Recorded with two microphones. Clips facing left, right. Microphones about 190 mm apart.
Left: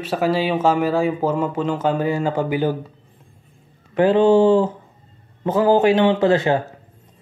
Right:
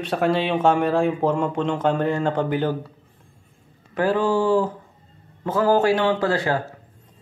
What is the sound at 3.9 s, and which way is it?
A man's voice, 20° left (ahead or behind).